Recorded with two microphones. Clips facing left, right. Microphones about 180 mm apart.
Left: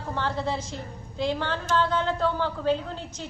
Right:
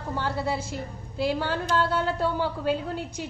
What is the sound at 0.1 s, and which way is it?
A woman's voice, 10° right (ahead or behind).